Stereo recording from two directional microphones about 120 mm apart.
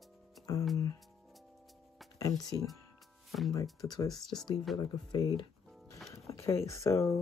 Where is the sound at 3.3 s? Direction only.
Centre (ahead or behind).